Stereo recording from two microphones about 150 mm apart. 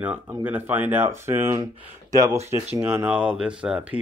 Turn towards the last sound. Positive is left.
turn(degrees=-10)  # may be behind; listen again after turning